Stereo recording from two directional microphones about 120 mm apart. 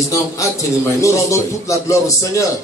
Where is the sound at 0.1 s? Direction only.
25° left (ahead or behind).